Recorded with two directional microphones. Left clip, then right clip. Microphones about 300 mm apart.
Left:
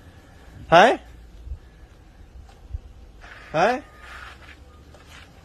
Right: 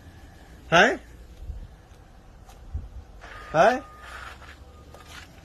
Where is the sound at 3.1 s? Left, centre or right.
Right.